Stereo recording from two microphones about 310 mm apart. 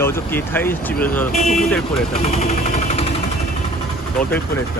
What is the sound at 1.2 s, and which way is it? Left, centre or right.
Speech, left.